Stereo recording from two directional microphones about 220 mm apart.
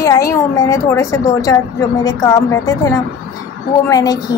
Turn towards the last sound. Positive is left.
turn(degrees=15)  # may be behind; listen again after turning